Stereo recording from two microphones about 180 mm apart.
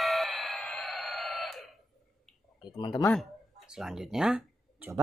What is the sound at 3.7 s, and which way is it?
Speech, 5° right (ahead or behind).